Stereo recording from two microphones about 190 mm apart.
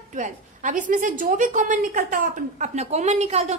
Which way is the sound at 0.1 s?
40° right (ahead or behind).